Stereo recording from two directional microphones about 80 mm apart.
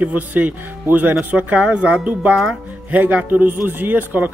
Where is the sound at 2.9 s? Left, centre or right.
Centre.